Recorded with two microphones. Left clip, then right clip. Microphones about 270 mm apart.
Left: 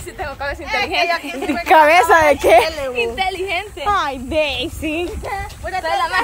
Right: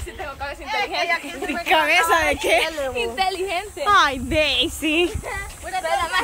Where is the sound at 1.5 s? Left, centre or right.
Centre.